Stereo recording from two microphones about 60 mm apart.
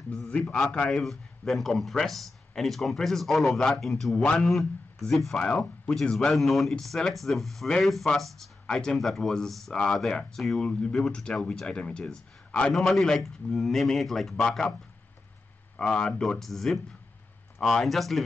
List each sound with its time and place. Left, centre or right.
0.3 s a man's voice: centre
0.9 s a man's voice: centre
5.4 s speech: centre
6.1 s speech: centre
10.6 s a man's voice: centre
12.7 s speech: centre
15.8 s a man's voice: centre